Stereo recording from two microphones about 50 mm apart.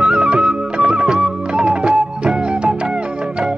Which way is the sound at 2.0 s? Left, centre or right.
Centre.